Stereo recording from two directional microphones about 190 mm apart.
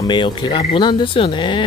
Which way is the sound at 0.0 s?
25° left (ahead or behind).